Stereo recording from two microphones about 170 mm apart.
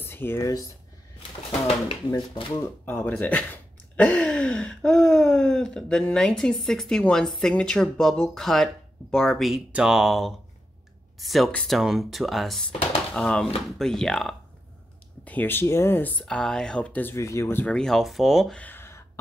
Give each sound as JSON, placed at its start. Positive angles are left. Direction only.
{"t": 0.0, "sound": "speech", "side_deg": 15}
{"t": 2.5, "sound": "speech", "side_deg": 10}